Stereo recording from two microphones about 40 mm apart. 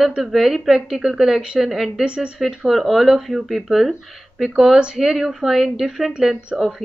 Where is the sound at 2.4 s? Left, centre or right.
Centre.